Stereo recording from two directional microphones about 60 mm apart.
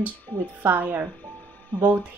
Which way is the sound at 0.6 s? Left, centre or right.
Right.